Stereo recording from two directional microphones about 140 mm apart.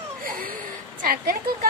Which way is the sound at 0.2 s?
90° right.